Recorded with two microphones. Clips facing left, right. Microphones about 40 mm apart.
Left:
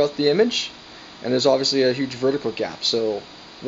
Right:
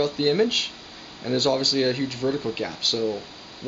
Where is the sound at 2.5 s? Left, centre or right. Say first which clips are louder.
Left 3 dB; centre.